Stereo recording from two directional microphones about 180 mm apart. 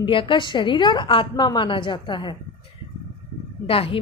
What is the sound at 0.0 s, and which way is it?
A woman's voice, 30° left (ahead or behind).